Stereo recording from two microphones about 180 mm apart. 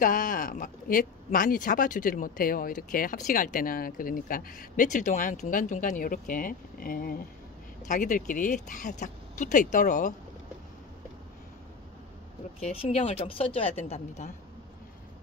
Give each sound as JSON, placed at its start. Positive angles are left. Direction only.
{"t": 0.0, "sound": "speech", "side_deg": 50}
{"t": 12.5, "sound": "speech", "side_deg": 35}